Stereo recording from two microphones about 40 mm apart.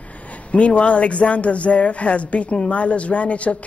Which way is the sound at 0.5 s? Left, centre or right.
Left.